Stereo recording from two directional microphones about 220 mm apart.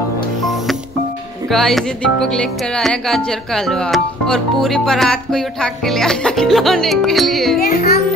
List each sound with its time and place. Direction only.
1.5 s speech: centre (ahead or behind)
7.6 s music: 45° left (ahead or behind)